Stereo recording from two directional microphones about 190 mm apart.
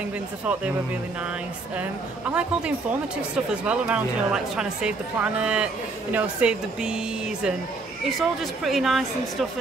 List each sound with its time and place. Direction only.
1.8 s a woman's voice: 5° right (ahead or behind)